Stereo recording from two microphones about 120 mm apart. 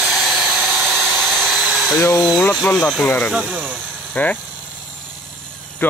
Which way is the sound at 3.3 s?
5° right (ahead or behind).